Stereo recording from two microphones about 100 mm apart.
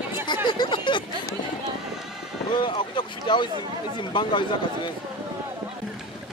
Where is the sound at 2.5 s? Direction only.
55° left (ahead or behind).